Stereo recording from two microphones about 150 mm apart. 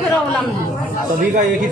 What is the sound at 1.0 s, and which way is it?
Speech, 60° right (ahead or behind).